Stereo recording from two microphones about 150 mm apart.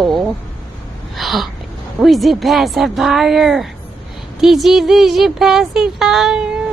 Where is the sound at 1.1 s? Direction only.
Centre (ahead or behind).